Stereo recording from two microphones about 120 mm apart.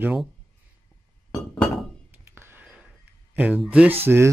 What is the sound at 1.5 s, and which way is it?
Thunk, 5° left (ahead or behind).